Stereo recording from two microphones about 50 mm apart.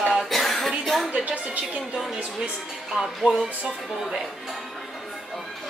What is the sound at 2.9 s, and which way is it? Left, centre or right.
Music, centre.